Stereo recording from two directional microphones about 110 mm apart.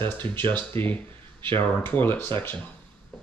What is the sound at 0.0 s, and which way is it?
Speech, 20° left (ahead or behind).